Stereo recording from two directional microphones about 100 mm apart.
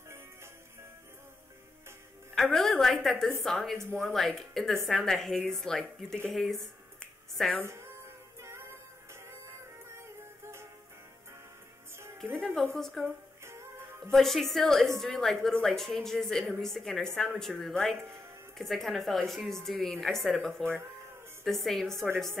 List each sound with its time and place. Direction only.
2.3 s a woman's voice: 5° left (ahead or behind)
6.3 s a sound: 5° left (ahead or behind)
7.6 s speech: 25° right (ahead or behind)
8.4 s music: 25° right (ahead or behind)
9.8 s music: 25° right (ahead or behind)
12.7 s a woman's voice: centre (ahead or behind)
13.4 s music: 25° right (ahead or behind)
14.1 s a woman's voice: centre (ahead or behind)